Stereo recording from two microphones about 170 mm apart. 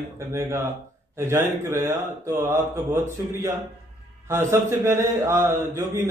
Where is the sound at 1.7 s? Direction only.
15° right (ahead or behind).